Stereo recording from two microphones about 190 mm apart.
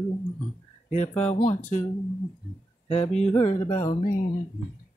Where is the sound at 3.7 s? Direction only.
45° left (ahead or behind).